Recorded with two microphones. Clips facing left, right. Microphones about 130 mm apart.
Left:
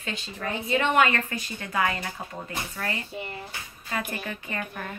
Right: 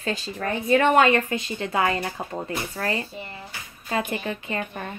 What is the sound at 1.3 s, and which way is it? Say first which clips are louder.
Speech: right 7 dB; 25° right (ahead or behind).